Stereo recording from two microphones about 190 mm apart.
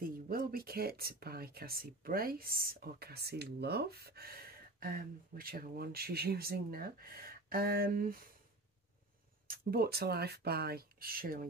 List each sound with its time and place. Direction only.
0.0 s speech: 50° right (ahead or behind)
9.5 s speech: 50° right (ahead or behind)